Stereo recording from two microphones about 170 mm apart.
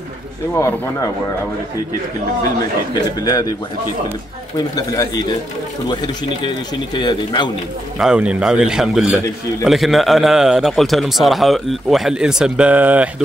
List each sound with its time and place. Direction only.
0.6 s speech: 15° left (ahead or behind)
2.9 s a man's voice: 20° left (ahead or behind)
4.7 s a man's voice: 20° left (ahead or behind)
7.0 s a man's voice: 25° left (ahead or behind)
8.0 s a man's voice: 5° right (ahead or behind)